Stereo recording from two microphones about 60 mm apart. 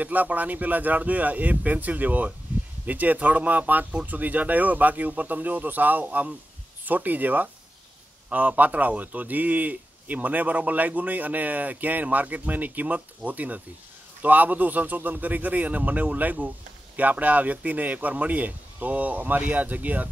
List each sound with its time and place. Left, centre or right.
0.0 s speech: right